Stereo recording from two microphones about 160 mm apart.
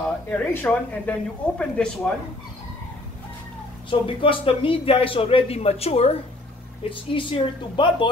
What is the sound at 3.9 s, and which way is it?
Speech, 35° left (ahead or behind).